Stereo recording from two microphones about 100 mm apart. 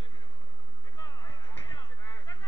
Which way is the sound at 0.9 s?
40° left (ahead or behind).